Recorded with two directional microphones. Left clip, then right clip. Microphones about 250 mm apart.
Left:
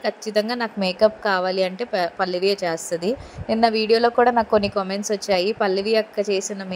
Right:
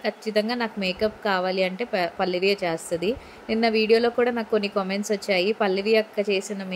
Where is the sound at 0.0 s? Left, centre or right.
Centre.